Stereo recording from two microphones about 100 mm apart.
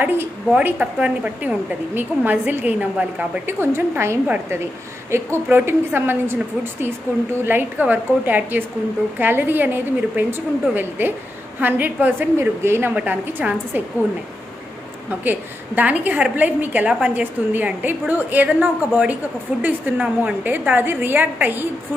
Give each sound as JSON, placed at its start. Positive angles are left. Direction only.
{"t": 0.0, "sound": "a woman's voice", "side_deg": -15}
{"t": 3.5, "sound": "a woman's voice", "side_deg": -25}
{"t": 15.2, "sound": "a woman's voice", "side_deg": -15}